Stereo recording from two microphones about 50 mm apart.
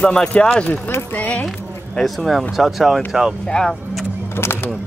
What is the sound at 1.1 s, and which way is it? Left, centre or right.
Speech, left.